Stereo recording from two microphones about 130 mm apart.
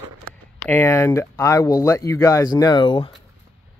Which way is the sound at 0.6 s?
15° left (ahead or behind).